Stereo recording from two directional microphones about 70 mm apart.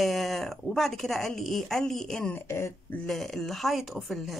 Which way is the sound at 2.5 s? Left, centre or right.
Left.